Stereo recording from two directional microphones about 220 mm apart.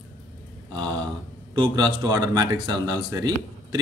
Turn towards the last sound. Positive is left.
turn(degrees=-15)  # may be behind; listen again after turning